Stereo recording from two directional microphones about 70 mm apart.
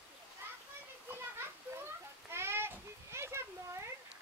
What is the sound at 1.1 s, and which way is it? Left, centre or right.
Children playing, right.